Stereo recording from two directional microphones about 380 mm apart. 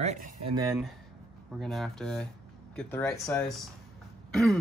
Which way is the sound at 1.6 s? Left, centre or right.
Centre.